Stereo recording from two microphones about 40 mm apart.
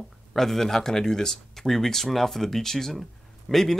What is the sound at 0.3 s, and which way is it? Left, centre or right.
Speech, centre.